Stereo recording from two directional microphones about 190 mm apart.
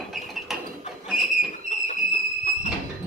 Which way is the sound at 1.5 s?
40° left (ahead or behind).